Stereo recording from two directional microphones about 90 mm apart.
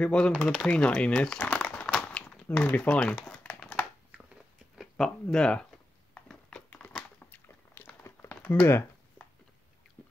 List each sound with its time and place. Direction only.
0.0 s speech: 10° left (ahead or behind)
3.4 s a sound: 20° left (ahead or behind)
4.9 s speech: 5° left (ahead or behind)
6.7 s crumpling: 15° left (ahead or behind)
8.5 s speech: 30° left (ahead or behind)
10.0 s boat: 15° left (ahead or behind)